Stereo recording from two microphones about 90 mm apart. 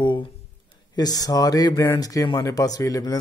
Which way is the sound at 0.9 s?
45° left (ahead or behind).